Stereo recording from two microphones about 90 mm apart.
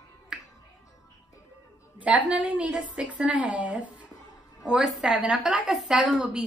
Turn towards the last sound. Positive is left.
turn(degrees=-5)  # may be behind; listen again after turning